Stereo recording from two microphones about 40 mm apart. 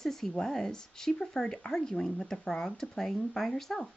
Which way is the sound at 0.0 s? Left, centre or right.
Centre.